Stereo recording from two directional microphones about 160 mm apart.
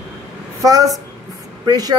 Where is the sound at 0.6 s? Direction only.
20° right (ahead or behind).